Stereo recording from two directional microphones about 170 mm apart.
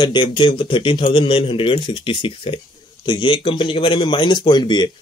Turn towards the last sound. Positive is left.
turn(degrees=25)  # may be behind; listen again after turning